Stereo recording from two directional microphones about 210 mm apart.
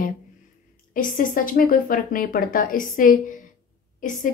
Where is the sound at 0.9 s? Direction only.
40° left (ahead or behind).